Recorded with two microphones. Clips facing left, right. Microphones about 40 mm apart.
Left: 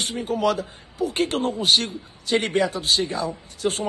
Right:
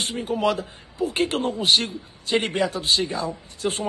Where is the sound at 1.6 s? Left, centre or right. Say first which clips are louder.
Right 1 dB; right.